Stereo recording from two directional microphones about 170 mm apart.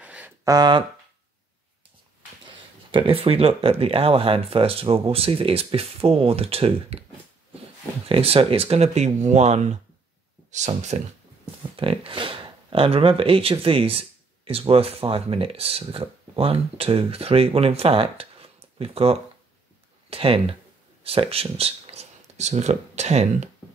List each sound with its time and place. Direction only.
0.0 s a sound: 10° right (ahead or behind)
0.5 s speech: 25° right (ahead or behind)
2.4 s speech: 30° right (ahead or behind)
8.1 s speech: 35° right (ahead or behind)